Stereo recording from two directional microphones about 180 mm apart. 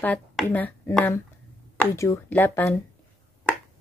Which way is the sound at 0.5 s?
10° left (ahead or behind).